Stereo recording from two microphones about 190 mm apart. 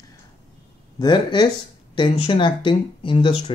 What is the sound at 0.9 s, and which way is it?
Speech, 25° left (ahead or behind).